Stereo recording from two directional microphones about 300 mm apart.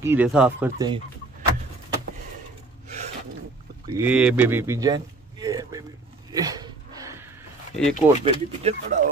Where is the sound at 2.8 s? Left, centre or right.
Right.